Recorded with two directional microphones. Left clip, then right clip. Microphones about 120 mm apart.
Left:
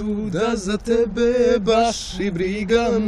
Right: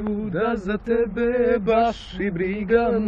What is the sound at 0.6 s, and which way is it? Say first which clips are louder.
Mantra: left 3 dB; 50° left (ahead or behind).